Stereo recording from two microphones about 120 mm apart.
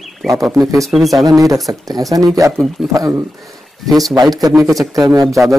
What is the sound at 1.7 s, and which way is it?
A man's voice, 30° right (ahead or behind).